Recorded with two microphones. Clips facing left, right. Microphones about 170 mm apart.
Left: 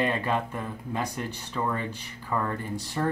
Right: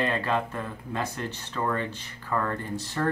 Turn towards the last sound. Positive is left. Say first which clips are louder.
# even
turn(degrees=10)  # may be behind; listen again after turning